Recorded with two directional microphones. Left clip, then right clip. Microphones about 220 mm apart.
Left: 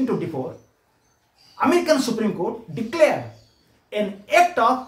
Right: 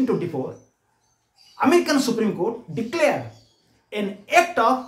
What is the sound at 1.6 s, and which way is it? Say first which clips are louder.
Speech: even; 15° right (ahead or behind).